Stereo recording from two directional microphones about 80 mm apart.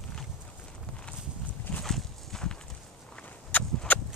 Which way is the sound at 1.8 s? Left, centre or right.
Centre.